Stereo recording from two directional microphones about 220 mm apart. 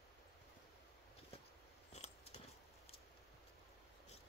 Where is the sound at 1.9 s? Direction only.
30° left (ahead or behind).